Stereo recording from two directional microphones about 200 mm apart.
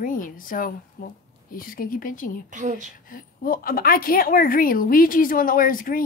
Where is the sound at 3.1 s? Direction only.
45° left (ahead or behind).